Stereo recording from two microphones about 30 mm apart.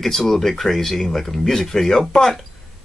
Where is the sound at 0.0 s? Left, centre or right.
Centre.